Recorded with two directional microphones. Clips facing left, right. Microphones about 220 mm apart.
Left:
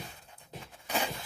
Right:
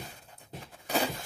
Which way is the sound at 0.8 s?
35° right (ahead or behind).